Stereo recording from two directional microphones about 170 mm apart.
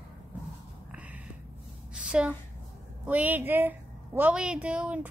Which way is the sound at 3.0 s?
10° right (ahead or behind).